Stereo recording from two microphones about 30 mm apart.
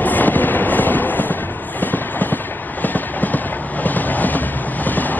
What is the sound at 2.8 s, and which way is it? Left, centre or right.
Train, left.